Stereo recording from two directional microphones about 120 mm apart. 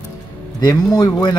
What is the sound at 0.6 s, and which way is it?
Speech, 35° left (ahead or behind).